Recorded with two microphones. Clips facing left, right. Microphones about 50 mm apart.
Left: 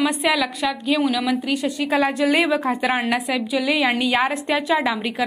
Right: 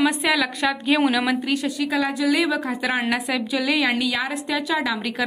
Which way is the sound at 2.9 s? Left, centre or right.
Centre.